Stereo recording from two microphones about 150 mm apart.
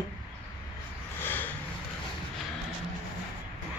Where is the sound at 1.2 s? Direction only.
15° left (ahead or behind).